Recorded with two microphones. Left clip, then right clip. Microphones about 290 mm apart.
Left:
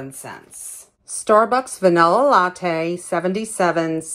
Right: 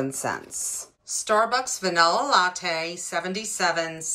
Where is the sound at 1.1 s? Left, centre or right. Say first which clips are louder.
Left 7 dB; centre.